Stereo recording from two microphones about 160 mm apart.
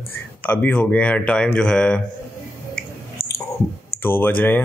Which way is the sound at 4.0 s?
15° left (ahead or behind).